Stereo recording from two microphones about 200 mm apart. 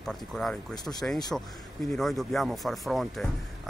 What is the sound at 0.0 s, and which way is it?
Speech, centre (ahead or behind).